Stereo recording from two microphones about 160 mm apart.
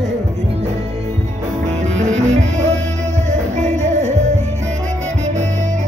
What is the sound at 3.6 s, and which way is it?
Music, 45° right (ahead or behind).